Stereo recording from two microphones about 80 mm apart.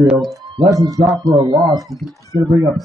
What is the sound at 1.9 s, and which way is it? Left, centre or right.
Speech, centre.